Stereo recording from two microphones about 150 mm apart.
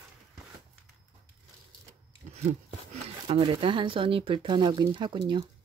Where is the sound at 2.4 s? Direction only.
45° right (ahead or behind).